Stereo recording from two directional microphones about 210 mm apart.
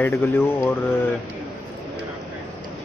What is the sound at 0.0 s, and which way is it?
Speech, 10° left (ahead or behind).